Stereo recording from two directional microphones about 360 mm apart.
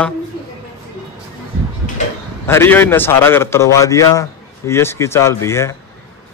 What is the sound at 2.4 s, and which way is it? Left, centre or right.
A man's voice, centre.